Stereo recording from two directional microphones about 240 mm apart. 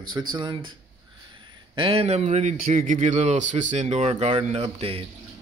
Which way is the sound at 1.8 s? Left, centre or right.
Right.